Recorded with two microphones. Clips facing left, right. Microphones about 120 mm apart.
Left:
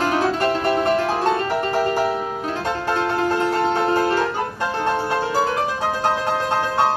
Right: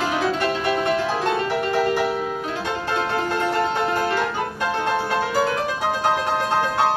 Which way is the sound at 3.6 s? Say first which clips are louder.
Left 3 dB; 35° left (ahead or behind).